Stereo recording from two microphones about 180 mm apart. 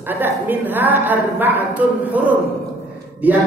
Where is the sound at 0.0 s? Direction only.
10° right (ahead or behind).